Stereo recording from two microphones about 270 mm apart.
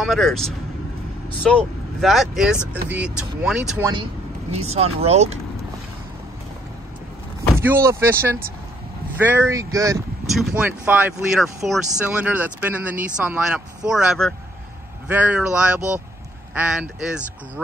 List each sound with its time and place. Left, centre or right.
0.0 s speech: centre
4.6 s speech: right
7.5 s speech: centre